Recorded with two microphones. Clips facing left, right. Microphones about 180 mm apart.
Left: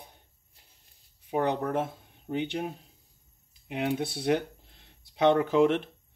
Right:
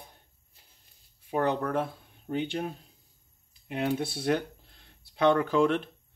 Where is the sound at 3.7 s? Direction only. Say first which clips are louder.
Even; 15° left (ahead or behind).